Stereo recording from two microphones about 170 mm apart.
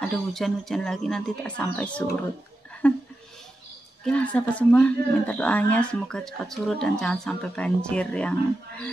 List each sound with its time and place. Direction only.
0.0 s speech: centre (ahead or behind)
4.0 s speech: 5° left (ahead or behind)